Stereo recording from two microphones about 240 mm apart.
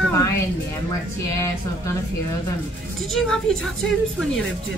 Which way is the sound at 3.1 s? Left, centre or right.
Centre.